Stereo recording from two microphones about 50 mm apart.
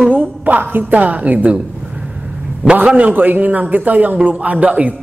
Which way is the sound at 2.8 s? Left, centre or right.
Right.